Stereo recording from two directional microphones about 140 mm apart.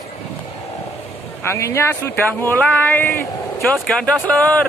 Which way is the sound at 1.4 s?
20° left (ahead or behind).